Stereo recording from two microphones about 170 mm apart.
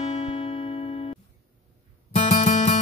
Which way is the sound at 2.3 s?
45° left (ahead or behind).